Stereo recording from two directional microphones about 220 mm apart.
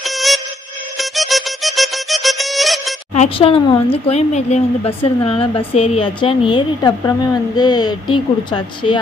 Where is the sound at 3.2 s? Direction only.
25° left (ahead or behind).